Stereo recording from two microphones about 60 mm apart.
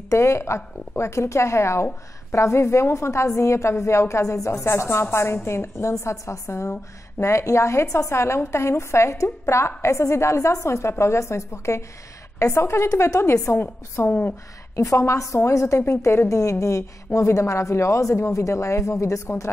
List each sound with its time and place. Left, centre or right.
0.1 s a woman's voice: left
13.2 s a woman's voice: left
15.0 s a woman's voice: left